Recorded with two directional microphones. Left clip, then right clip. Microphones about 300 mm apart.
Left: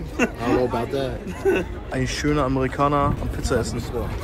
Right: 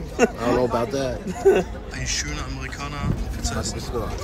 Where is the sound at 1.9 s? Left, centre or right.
Centre.